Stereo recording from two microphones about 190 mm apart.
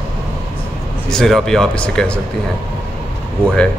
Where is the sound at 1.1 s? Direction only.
Centre (ahead or behind).